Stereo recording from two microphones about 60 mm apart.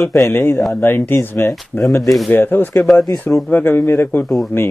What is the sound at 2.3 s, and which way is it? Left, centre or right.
Speech, left.